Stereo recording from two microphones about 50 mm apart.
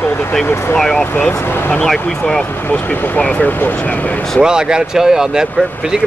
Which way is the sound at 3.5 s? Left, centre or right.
Left.